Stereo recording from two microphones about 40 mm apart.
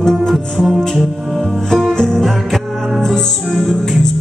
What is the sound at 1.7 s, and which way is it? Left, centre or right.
Music, centre.